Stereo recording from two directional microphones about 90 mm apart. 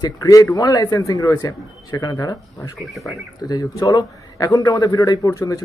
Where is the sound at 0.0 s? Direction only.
45° left (ahead or behind).